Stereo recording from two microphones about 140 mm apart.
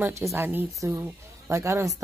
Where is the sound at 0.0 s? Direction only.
20° right (ahead or behind).